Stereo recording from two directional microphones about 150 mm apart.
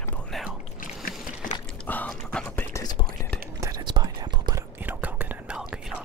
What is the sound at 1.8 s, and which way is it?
Whispering, 10° left (ahead or behind).